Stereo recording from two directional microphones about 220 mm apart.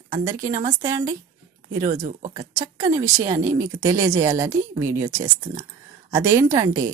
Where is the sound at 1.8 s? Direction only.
30° right (ahead or behind).